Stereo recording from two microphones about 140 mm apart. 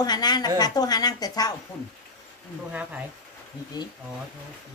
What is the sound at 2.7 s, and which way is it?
Speech, 10° right (ahead or behind).